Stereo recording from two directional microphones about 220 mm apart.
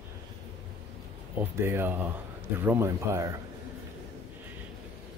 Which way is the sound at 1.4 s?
10° right (ahead or behind).